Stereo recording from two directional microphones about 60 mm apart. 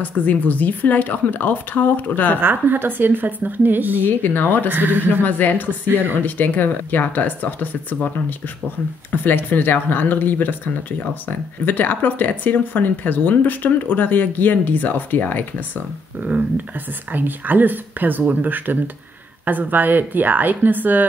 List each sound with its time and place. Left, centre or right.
0.0 s speech: left
2.4 s speech: right
4.0 s speech: left
4.6 s speech: right
5.2 s speech: left
9.1 s speech: left
16.2 s speech: right
17.1 s speech: right